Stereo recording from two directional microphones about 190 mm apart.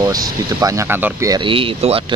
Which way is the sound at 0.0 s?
15° right (ahead or behind).